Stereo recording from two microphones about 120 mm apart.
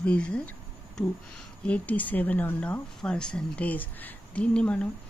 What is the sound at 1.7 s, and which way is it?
Speech, 10° left (ahead or behind).